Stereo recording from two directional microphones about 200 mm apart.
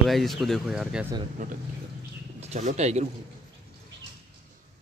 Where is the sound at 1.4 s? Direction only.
35° right (ahead or behind).